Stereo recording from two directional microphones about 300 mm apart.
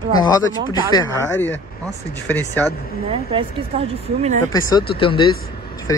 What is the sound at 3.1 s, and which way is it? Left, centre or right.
Speech, centre.